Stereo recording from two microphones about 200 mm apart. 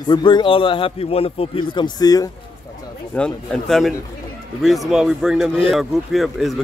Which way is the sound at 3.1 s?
5° left (ahead or behind).